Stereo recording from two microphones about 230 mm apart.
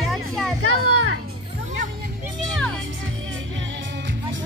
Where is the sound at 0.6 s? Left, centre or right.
Right.